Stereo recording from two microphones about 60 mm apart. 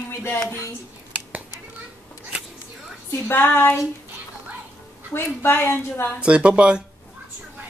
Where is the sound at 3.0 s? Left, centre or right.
Left.